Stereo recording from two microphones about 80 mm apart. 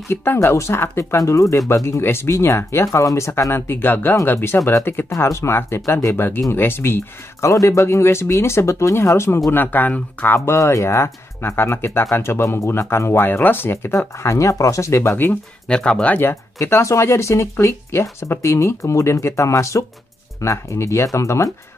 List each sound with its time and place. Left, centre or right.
0.1 s speech: left
7.4 s speech: left
9.5 s speech: left
13.9 s speech: left
15.7 s speech: centre
16.5 s speech: left